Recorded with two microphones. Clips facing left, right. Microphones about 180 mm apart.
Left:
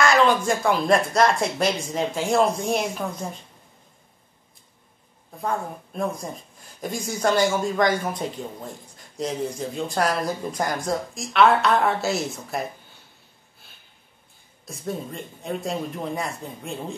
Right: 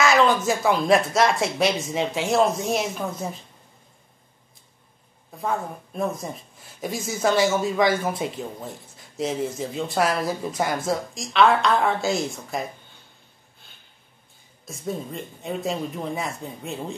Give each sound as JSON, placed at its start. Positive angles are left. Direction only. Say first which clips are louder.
{"t": 0.0, "sound": "a sound", "louder": "even", "side_deg": 0}
{"t": 0.5, "sound": "a man's voice", "louder": "right 1 dB", "side_deg": -5}
{"t": 5.4, "sound": "a man's voice", "louder": "even", "side_deg": 0}
{"t": 14.7, "sound": "a man's voice", "louder": "even", "side_deg": 0}